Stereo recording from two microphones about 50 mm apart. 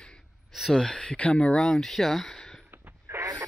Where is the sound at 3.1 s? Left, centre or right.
Right.